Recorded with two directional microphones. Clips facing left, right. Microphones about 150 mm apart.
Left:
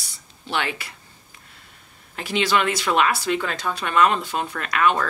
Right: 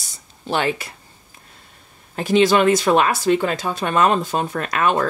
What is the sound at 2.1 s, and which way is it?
Speech, 40° right (ahead or behind).